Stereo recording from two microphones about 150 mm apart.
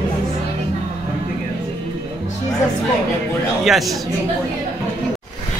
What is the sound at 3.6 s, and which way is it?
Speech, centre (ahead or behind).